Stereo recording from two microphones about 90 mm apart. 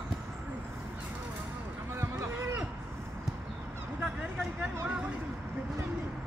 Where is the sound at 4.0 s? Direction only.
15° right (ahead or behind).